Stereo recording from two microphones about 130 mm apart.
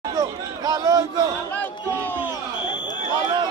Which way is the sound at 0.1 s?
30° right (ahead or behind).